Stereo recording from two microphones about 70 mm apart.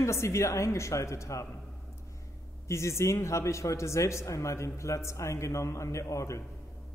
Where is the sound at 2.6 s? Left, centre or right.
Left.